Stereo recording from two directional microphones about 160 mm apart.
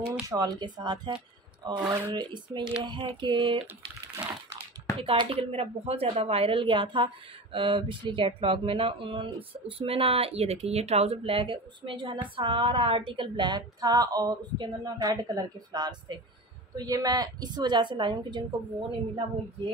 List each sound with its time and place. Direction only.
0.3 s a woman's voice: 25° right (ahead or behind)
2.1 s a woman's voice: 30° right (ahead or behind)
4.9 s a woman's voice: 30° right (ahead or behind)